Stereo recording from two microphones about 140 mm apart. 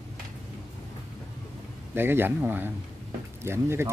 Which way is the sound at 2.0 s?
15° right (ahead or behind).